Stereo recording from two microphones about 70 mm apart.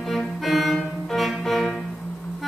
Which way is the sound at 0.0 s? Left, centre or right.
Centre.